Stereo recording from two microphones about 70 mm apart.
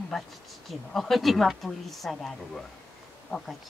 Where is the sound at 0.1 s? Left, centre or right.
Centre.